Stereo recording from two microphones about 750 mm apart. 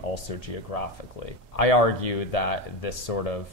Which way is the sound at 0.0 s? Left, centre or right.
Left.